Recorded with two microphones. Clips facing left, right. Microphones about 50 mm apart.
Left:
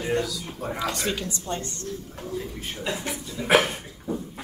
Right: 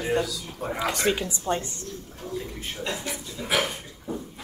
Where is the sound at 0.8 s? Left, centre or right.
Right.